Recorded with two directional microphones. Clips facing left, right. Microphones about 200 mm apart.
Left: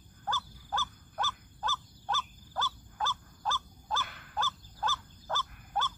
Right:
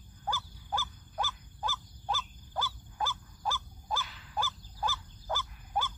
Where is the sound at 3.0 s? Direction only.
10° right (ahead or behind).